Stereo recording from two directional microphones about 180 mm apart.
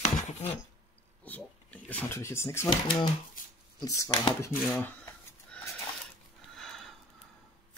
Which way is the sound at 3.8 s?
20° left (ahead or behind).